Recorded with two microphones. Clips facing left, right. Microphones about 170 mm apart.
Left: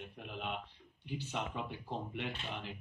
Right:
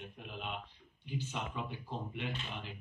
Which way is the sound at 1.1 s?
65° left (ahead or behind).